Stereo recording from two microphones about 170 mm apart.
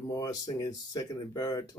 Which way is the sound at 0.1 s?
20° left (ahead or behind).